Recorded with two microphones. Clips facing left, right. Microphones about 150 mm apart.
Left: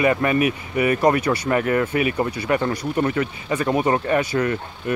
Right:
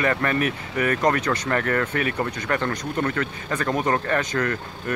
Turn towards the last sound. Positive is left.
turn(degrees=10)  # may be behind; listen again after turning